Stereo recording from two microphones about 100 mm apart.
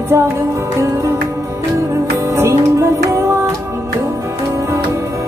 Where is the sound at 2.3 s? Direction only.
30° right (ahead or behind).